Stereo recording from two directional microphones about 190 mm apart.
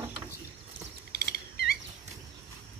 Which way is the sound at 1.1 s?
55° left (ahead or behind).